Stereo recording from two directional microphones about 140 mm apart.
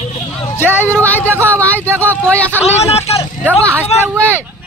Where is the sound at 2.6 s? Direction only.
50° left (ahead or behind).